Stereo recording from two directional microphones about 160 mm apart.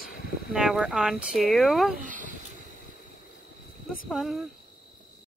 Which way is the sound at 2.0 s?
55° right (ahead or behind).